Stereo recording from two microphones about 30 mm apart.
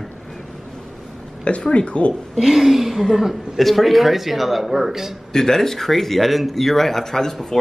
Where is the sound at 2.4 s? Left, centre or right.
Centre.